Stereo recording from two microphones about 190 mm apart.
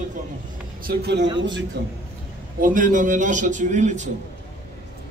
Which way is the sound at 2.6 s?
45° right (ahead or behind).